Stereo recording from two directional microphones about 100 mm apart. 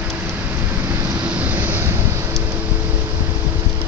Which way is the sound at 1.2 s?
15° right (ahead or behind).